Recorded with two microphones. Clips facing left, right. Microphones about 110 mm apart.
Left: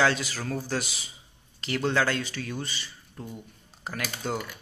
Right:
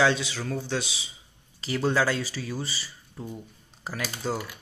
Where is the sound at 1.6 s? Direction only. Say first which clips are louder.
Right 1 dB; 10° right (ahead or behind).